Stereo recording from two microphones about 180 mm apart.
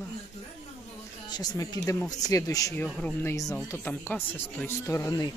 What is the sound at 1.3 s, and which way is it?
Speech, 20° left (ahead or behind).